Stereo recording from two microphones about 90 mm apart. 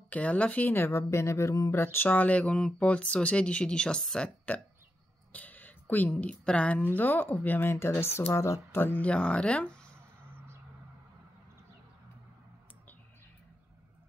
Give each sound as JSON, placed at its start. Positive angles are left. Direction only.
{"t": 0.1, "sound": "a woman's voice", "side_deg": 15}